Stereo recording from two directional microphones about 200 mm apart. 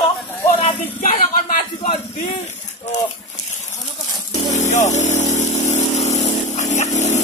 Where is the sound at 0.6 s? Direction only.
40° left (ahead or behind).